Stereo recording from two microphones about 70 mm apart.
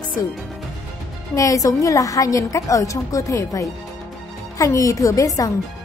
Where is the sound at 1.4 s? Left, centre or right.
Left.